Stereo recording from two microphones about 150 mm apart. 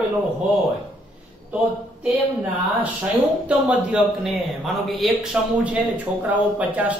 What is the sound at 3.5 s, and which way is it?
Speech, 10° right (ahead or behind).